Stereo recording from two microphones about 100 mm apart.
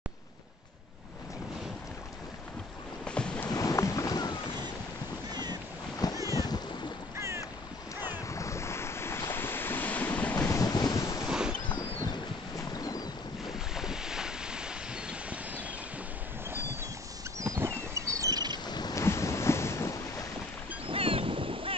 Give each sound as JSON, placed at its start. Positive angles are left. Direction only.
{"t": 3.1, "sound": "waves", "side_deg": 10}
{"t": 3.4, "sound": "boat", "side_deg": 35}
{"t": 5.3, "sound": "boat", "side_deg": -45}
{"t": 6.2, "sound": "boat", "side_deg": 40}
{"t": 7.2, "sound": "boat", "side_deg": -30}
{"t": 8.3, "sound": "waves", "side_deg": 30}
{"t": 10.3, "sound": "wind noise", "side_deg": 30}
{"t": 11.2, "sound": "a sound", "side_deg": -5}
{"t": 11.7, "sound": "boat", "side_deg": 45}
{"t": 13.7, "sound": "waves", "side_deg": -5}
{"t": 17.6, "sound": "a sound", "side_deg": -30}
{"t": 18.7, "sound": "boat", "side_deg": 45}
{"t": 18.9, "sound": "waves", "side_deg": 30}
{"t": 20.8, "sound": "boat", "side_deg": -65}